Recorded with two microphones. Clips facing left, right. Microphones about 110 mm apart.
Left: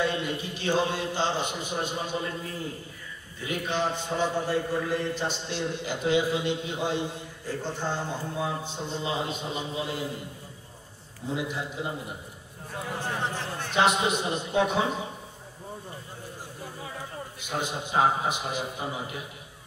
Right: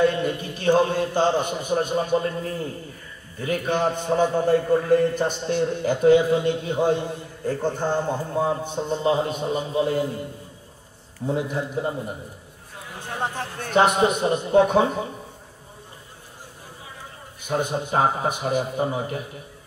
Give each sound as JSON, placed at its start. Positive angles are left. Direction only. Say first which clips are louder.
{"t": 0.0, "sound": "a man's voice", "louder": "right 7 dB", "side_deg": -50}
{"t": 11.2, "sound": "a man's voice", "louder": "right 6 dB", "side_deg": -45}
{"t": 13.0, "sound": "a man's voice", "louder": "right 5 dB", "side_deg": -50}
{"t": 17.5, "sound": "a man's voice", "louder": "right 7 dB", "side_deg": -50}